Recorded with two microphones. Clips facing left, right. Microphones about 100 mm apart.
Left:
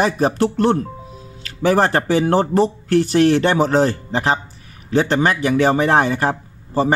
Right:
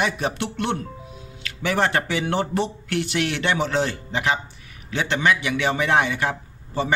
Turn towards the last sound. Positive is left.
turn(degrees=40)  # may be behind; listen again after turning